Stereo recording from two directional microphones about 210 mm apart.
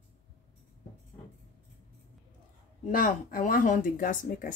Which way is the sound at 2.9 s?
40° left (ahead or behind).